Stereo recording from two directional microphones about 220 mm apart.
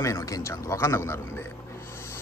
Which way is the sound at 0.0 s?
15° left (ahead or behind).